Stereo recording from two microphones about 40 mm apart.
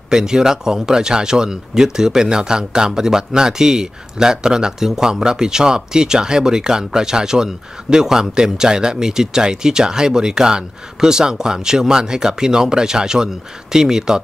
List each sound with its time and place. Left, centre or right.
0.1 s speech: centre